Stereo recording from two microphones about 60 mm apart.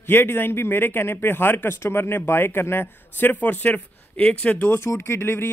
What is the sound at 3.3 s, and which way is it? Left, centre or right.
Speech, left.